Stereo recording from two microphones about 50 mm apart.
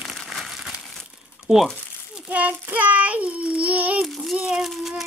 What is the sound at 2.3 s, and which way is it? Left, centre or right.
Child singing, right.